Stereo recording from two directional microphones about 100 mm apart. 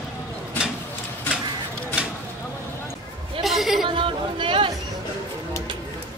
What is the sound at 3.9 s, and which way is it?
Music, 60° right (ahead or behind).